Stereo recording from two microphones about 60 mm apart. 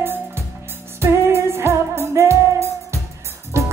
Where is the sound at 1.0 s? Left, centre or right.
Right.